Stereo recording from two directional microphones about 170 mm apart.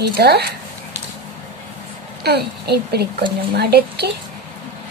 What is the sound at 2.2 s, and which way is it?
A woman's voice, 70° right (ahead or behind).